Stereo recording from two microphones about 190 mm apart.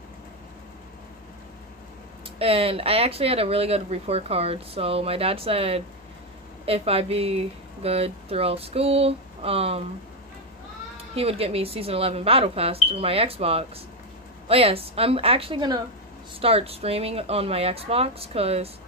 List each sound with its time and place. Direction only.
2.3 s speech: 30° right (ahead or behind)
11.1 s speech: 30° right (ahead or behind)